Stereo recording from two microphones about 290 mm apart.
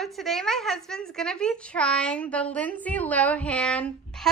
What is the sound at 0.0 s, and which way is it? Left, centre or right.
A woman's voice, centre.